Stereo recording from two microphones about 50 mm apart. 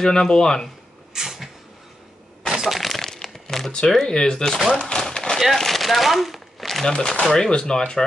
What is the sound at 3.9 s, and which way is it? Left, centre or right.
Speech, centre.